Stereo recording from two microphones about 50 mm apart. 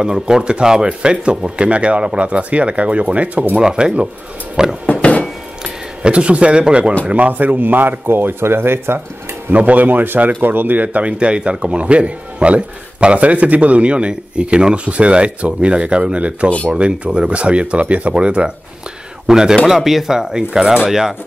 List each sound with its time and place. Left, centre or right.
0.0 s speech: centre
3.6 s speech: centre
4.6 s a sound: centre
5.6 s speech: right
9.5 s speech: right
16.4 s speech: left
16.7 s speech: right